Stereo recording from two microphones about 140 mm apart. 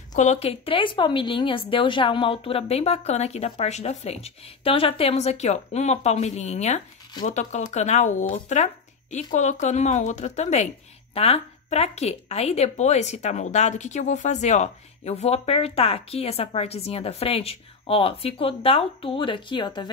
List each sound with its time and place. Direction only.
0.1 s a woman's voice: 60° left (ahead or behind); by 19.9 s 35° left (ahead or behind)